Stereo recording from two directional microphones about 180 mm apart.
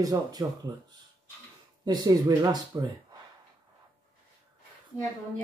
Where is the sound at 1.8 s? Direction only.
25° right (ahead or behind).